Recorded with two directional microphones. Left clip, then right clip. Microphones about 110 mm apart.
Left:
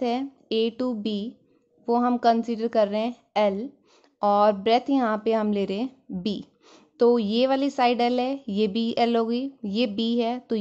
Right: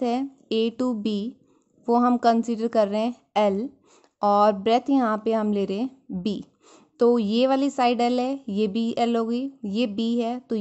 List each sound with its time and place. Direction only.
0.0 s a woman's voice: 30° right (ahead or behind)